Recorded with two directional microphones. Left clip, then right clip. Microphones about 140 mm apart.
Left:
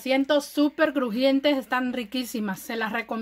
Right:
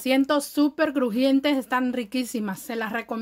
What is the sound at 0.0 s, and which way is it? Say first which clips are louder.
Speech: even; 45° right (ahead or behind).